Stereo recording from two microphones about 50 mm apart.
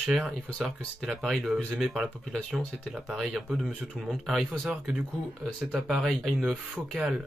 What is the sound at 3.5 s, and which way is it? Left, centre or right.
Speech, centre.